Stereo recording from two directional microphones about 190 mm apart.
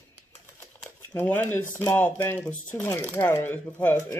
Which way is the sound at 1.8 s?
10° left (ahead or behind).